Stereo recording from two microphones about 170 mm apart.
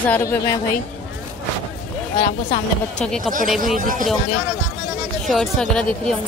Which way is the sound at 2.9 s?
5° left (ahead or behind).